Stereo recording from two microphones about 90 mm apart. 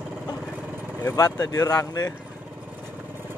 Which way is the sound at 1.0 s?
40° left (ahead or behind).